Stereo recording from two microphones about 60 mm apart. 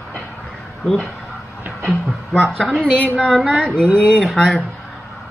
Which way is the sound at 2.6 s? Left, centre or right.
Centre.